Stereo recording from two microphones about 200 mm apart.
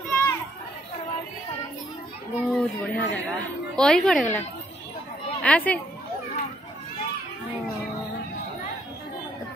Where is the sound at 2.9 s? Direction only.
60° left (ahead or behind).